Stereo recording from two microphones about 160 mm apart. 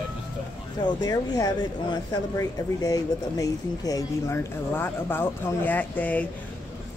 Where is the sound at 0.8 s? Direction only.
25° left (ahead or behind).